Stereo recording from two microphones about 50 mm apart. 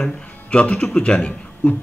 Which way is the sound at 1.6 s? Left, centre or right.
Left.